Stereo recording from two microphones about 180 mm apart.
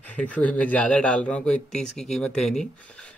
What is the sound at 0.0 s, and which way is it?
Speech, 10° left (ahead or behind).